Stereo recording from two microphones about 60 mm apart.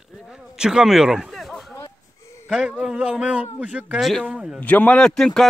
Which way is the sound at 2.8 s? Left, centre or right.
Centre.